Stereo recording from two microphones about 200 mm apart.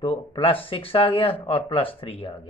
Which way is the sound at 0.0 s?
25° left (ahead or behind).